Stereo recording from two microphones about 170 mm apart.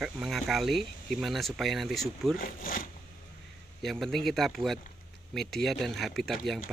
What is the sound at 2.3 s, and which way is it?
Speech, 55° left (ahead or behind).